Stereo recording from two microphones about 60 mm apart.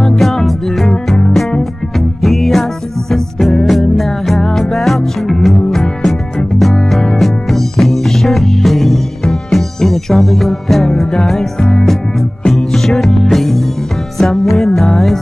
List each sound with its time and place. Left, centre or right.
0.0 s music: centre